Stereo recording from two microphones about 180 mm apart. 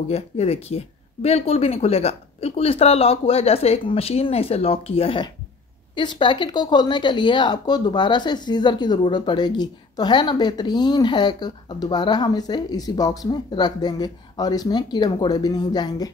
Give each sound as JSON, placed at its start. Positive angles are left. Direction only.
{"t": 0.1, "sound": "speech", "side_deg": 35}